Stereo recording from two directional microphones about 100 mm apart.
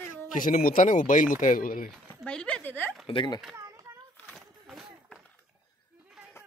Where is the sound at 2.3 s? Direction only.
10° left (ahead or behind).